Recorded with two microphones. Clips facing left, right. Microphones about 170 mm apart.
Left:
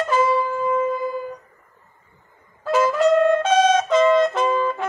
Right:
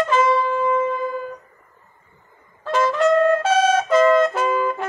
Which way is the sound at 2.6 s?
5° left (ahead or behind).